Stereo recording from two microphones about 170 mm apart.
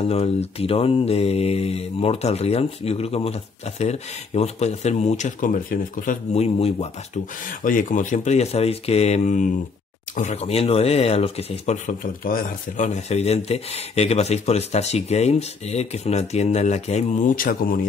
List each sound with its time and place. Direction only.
0.0 s speech: 35° left (ahead or behind); by 6.1 s 55° left (ahead or behind)
6.3 s speech: 40° left (ahead or behind)
7.6 s speech: 50° left (ahead or behind)